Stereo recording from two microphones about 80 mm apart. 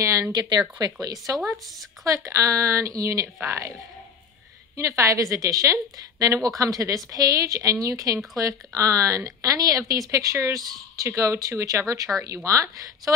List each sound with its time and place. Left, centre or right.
0.0 s a sound: right
0.3 s a woman's voice: right
4.7 s a woman's voice: right
12.1 s speech: centre
12.4 s a woman's voice: right